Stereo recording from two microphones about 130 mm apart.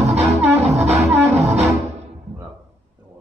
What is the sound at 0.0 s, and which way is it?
Music, 55° right (ahead or behind).